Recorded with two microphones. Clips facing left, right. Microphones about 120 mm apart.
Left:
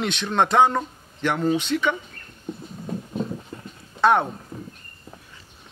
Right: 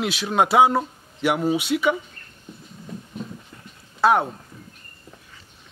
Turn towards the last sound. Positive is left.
turn(degrees=-5)  # may be behind; listen again after turning